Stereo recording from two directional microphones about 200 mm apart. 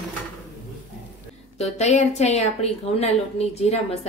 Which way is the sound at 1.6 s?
35° left (ahead or behind).